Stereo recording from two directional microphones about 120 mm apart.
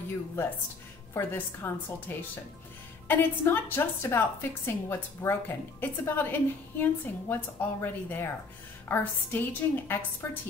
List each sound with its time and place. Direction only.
1.1 s a woman's voice: 20° left (ahead or behind)